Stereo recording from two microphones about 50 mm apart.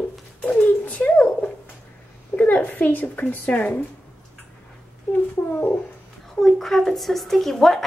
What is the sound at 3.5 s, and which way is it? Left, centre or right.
Speech, left.